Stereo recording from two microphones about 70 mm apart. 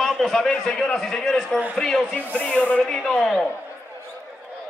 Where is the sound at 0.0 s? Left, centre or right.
Centre.